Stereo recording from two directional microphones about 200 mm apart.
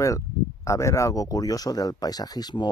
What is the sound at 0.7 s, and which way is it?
Speech, 15° left (ahead or behind).